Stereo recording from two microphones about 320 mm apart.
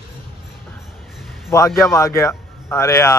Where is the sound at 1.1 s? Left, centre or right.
Centre.